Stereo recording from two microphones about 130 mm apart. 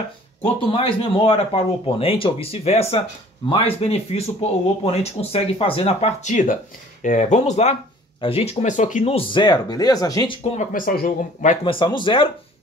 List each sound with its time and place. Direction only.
0.4 s speech: 45° left (ahead or behind); by 7.7 s 60° left (ahead or behind)
8.2 s speech: 45° left (ahead or behind)
8.6 s speech: 70° left (ahead or behind)
9.0 s speech: 45° left (ahead or behind); by 10.3 s 25° left (ahead or behind)
10.3 s speech: 55° left (ahead or behind); by 11.5 s 90° left
11.6 s speech: 40° left (ahead or behind)